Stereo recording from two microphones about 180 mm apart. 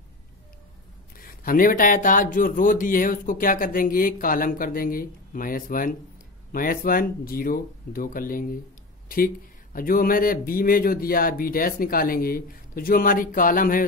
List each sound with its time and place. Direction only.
1.1 s speech: 50° left (ahead or behind)